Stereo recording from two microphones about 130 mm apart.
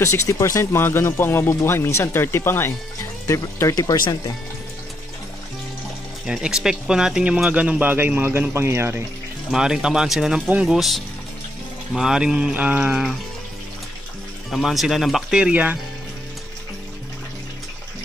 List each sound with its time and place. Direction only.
0.0 s speech: 20° left (ahead or behind)
6.2 s speech: 5° right (ahead or behind)
9.5 s speech: 5° right (ahead or behind)
14.5 s speech: centre (ahead or behind)